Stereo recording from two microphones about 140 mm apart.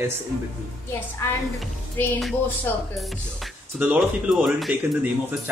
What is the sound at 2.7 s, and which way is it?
Speech, 15° left (ahead or behind).